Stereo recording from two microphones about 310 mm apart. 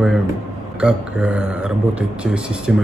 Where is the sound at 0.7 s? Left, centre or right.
Centre.